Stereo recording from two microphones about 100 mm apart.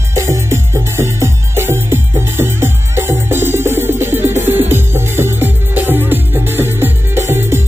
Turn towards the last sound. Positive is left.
turn(degrees=-25)  # may be behind; listen again after turning